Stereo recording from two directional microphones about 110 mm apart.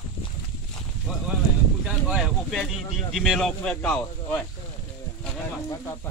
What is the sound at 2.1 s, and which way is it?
Speech, centre (ahead or behind).